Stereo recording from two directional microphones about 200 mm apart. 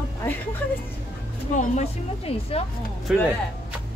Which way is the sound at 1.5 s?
30° left (ahead or behind).